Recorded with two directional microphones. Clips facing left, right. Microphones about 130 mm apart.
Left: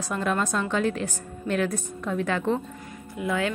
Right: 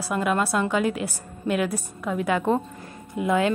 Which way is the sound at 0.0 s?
10° right (ahead or behind).